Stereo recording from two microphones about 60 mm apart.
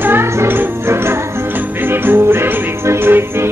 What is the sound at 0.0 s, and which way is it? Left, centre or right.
Music, right.